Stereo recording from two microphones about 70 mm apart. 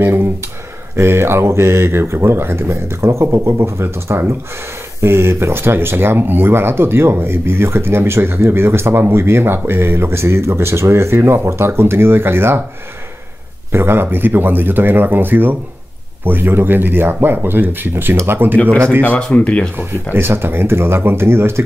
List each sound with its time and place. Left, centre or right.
0.0 s speech: right
13.7 s speech: right
19.3 s speech: centre
19.8 s speech: right